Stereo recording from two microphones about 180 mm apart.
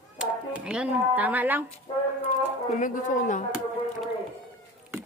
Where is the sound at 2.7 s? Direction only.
45° left (ahead or behind).